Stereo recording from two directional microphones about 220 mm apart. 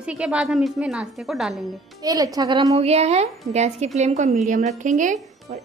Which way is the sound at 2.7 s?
30° right (ahead or behind).